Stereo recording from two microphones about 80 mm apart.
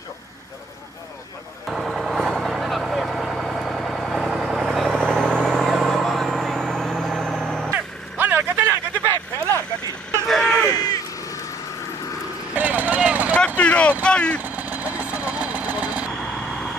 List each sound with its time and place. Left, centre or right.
1.7 s vehicle: centre
7.7 s vehicle: right
10.2 s vehicle: centre
10.7 s a sound: left
12.5 s vehicle: centre
13.6 s a sound: centre
14.0 s vehicle: centre
14.4 s vehicle: right